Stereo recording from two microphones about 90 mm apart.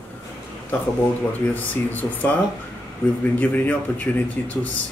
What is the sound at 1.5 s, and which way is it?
Speech, 20° left (ahead or behind).